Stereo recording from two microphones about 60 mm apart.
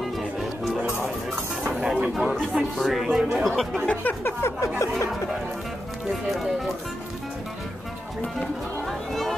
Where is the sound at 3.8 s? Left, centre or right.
Left.